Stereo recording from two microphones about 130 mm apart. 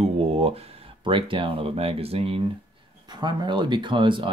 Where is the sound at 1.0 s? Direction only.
40° right (ahead or behind).